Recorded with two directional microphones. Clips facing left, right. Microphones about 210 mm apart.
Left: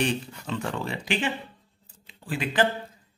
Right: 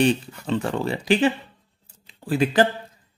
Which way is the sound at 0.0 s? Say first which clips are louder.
Right 7 dB; 35° right (ahead or behind).